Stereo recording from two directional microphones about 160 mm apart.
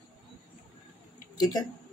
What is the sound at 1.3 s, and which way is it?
Speech, 25° left (ahead or behind).